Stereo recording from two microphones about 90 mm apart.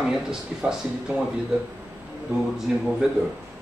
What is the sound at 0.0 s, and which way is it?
Speech, 5° right (ahead or behind).